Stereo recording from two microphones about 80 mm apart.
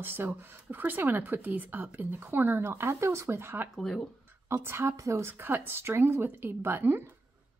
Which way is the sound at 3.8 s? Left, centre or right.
Centre.